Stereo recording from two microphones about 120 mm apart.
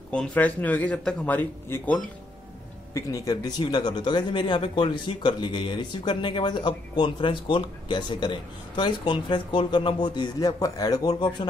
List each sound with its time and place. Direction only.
0.1 s speech: 10° left (ahead or behind)
2.9 s speech: 30° left (ahead or behind)